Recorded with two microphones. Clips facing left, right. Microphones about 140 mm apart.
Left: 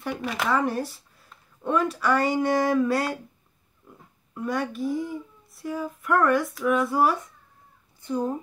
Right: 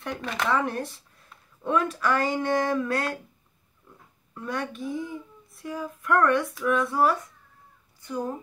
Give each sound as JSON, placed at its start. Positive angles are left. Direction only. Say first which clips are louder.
{"t": 0.0, "sound": "a child's voice", "louder": "left 2 dB", "side_deg": 5}
{"t": 4.3, "sound": "a child's voice", "louder": "left 4 dB", "side_deg": 5}
{"t": 8.0, "sound": "speech", "louder": "left 4 dB", "side_deg": 25}